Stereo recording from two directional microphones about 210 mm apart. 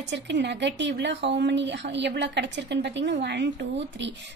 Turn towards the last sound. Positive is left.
turn(degrees=-55)  # may be behind; listen again after turning